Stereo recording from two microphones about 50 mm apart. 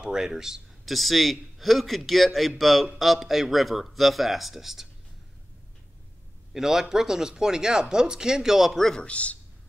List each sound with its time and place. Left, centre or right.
0.0 s speech: centre
0.9 s a man's voice: centre
6.5 s speech: centre
8.7 s a man's voice: centre
9.0 s speech: left